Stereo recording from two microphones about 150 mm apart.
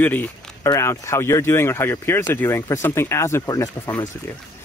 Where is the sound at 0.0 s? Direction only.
10° left (ahead or behind).